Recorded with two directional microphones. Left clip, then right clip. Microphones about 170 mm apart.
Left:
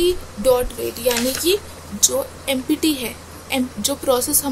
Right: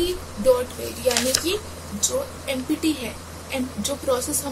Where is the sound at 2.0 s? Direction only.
55° left (ahead or behind).